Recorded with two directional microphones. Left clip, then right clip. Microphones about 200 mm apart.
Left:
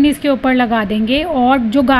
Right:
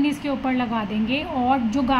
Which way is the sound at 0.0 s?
25° left (ahead or behind).